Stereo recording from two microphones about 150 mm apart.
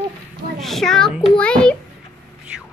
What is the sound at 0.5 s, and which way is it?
A child's voice, centre (ahead or behind).